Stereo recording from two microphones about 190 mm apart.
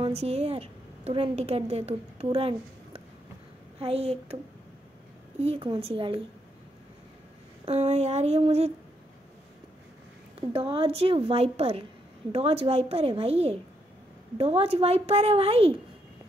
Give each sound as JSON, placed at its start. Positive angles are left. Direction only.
{"t": 0.0, "sound": "a woman's voice", "side_deg": -35}
{"t": 5.4, "sound": "a woman's voice", "side_deg": -30}
{"t": 7.6, "sound": "a woman's voice", "side_deg": -35}
{"t": 10.5, "sound": "a woman's voice", "side_deg": -30}